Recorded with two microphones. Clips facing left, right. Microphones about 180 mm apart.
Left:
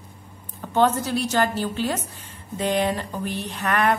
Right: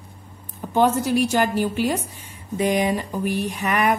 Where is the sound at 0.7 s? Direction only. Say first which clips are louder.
Right 2 dB; 10° right (ahead or behind).